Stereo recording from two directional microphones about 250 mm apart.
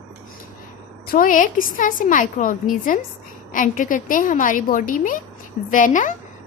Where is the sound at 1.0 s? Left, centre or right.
Left.